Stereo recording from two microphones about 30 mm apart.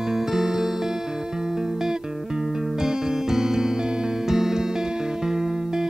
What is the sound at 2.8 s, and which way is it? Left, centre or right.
Music, centre.